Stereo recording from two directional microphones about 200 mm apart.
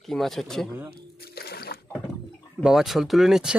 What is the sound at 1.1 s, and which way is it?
Water, 50° left (ahead or behind).